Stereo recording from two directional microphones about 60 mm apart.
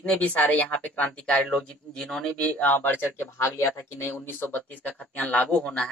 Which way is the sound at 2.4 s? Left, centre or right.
Left.